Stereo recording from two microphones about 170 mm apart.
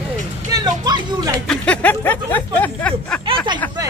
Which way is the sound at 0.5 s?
25° right (ahead or behind).